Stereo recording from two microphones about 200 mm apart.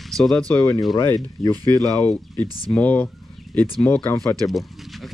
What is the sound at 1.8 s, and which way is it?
Speech, 5° left (ahead or behind).